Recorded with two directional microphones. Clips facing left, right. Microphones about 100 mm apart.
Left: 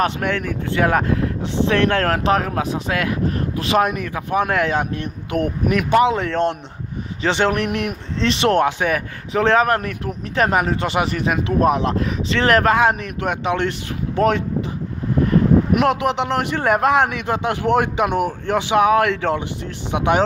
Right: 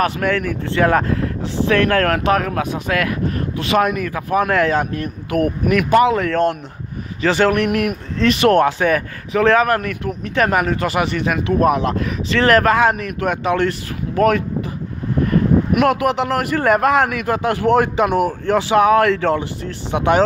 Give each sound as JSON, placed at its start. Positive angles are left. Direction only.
{"t": 0.0, "sound": "speech", "side_deg": 25}
{"t": 5.3, "sound": "speech", "side_deg": 30}
{"t": 9.3, "sound": "speech", "side_deg": 30}
{"t": 11.1, "sound": "speech", "side_deg": 35}
{"t": 15.7, "sound": "speech", "side_deg": 30}